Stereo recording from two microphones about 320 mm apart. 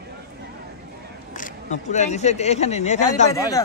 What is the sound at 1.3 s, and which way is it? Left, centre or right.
Speech, left.